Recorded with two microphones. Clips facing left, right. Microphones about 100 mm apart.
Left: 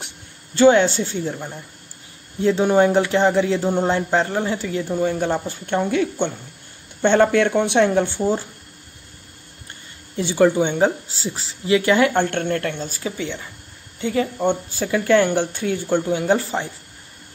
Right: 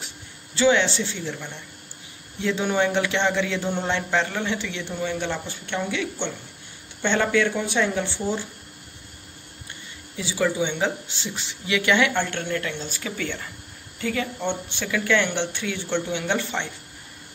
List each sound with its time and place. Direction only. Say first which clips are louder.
0.6 s speech: left 6 dB; 45° left (ahead or behind)
10.1 s speech: left 8 dB; 50° left (ahead or behind)
13.2 s speech: left 2 dB; 15° left (ahead or behind)
13.9 s speech: left 5 dB; 30° left (ahead or behind)